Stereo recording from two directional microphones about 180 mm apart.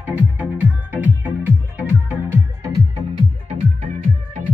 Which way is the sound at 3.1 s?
35° right (ahead or behind).